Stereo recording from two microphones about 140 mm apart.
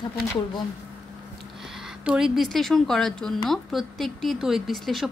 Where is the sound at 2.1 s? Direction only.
5° right (ahead or behind).